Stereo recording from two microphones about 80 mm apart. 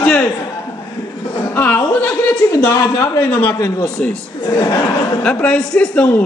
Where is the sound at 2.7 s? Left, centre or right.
Left.